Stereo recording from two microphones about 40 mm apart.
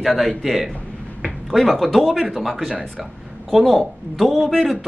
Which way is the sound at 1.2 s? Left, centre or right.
Centre.